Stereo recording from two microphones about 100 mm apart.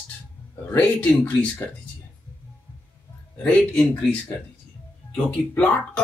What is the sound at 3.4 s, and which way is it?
Speech, 10° left (ahead or behind).